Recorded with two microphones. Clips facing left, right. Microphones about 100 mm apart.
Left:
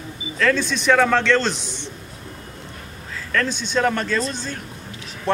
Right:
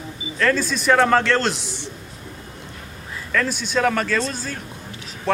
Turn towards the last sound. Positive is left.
turn(degrees=0)  # may be behind; listen again after turning